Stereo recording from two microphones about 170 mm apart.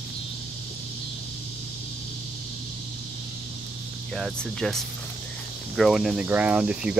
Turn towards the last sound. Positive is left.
turn(degrees=-5)  # may be behind; listen again after turning